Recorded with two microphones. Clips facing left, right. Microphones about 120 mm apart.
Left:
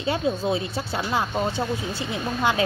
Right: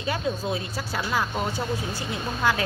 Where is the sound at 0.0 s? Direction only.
25° left (ahead or behind).